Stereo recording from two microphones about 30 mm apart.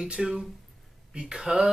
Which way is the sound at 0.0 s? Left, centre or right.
Right.